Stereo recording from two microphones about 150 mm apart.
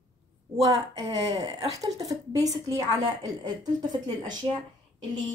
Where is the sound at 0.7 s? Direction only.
45° right (ahead or behind).